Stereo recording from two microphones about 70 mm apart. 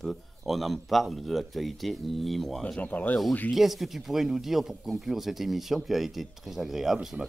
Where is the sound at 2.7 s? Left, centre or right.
Left.